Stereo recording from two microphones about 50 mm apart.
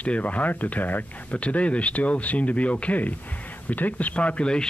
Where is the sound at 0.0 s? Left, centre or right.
Left.